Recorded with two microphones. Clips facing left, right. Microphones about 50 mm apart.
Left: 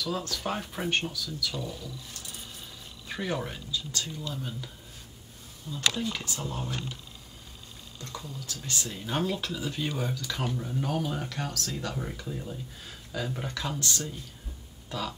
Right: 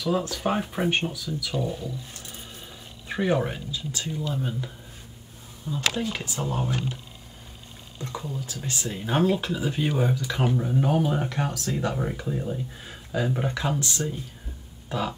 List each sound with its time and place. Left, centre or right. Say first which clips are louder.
0.0 s speech: right 6 dB; centre
3.1 s speech: right 8 dB; right
8.0 s speech: right 7 dB; right